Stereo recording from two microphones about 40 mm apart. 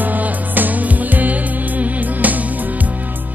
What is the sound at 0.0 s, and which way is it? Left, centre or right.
Music, right.